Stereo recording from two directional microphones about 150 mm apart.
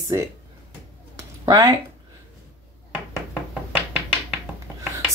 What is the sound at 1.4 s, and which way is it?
Speech, 25° right (ahead or behind).